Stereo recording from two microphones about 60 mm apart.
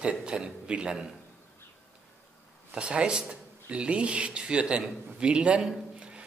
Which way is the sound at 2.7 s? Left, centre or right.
Centre.